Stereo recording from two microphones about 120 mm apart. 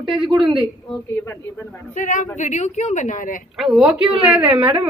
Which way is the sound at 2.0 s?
90° left.